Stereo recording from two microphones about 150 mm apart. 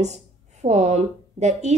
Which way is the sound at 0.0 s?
50° right (ahead or behind).